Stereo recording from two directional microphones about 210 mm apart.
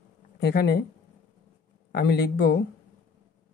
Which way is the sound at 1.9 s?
50° left (ahead or behind).